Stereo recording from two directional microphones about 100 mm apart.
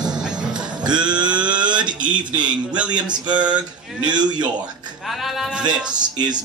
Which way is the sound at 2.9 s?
45° right (ahead or behind).